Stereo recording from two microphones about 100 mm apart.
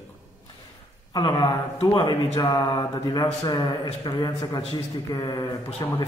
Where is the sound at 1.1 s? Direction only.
50° left (ahead or behind).